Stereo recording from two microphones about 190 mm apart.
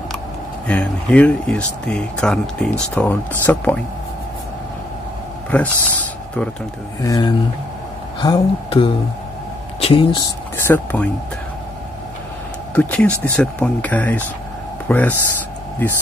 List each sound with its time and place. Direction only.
0.7 s speech: 10° left (ahead or behind)
5.5 s speech: 5° left (ahead or behind)
7.0 s speech: 20° left (ahead or behind)
10.6 s speech: 10° left (ahead or behind)
12.7 s speech: 5° left (ahead or behind)